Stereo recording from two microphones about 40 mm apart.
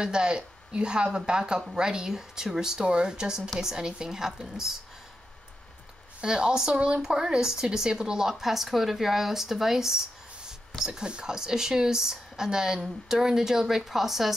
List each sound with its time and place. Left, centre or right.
0.0 s speech: right
6.2 s speech: centre